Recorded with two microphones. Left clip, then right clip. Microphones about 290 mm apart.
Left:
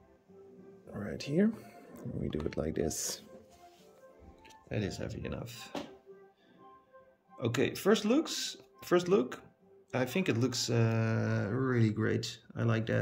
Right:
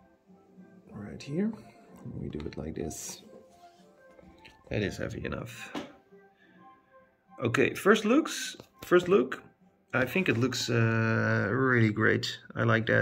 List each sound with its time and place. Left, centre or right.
0.9 s a sound: centre
2.2 s speech: centre
4.4 s speech: centre
7.4 s speech: centre